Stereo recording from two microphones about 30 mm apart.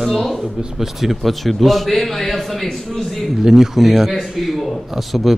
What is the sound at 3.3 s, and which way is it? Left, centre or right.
A man's voice, centre.